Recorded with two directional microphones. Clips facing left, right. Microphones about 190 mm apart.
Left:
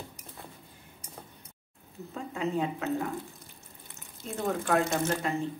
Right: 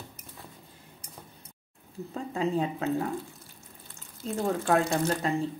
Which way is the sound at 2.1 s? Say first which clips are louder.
Right 3 dB; 35° right (ahead or behind).